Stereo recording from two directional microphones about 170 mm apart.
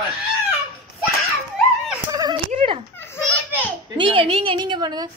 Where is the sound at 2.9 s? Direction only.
15° left (ahead or behind).